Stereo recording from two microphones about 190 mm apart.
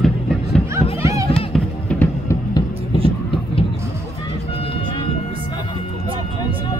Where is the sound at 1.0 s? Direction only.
15° right (ahead or behind).